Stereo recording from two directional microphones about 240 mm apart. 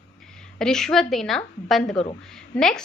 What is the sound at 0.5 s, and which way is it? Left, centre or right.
A woman's voice, centre.